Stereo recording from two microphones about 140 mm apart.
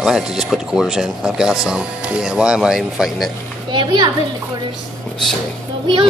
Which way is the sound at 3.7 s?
30° right (ahead or behind).